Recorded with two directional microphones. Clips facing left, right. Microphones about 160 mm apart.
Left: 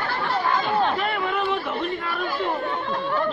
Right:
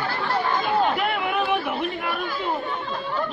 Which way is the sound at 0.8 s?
15° right (ahead or behind).